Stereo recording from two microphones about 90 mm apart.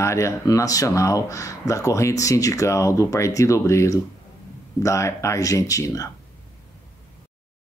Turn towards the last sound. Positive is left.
turn(degrees=35)  # may be behind; listen again after turning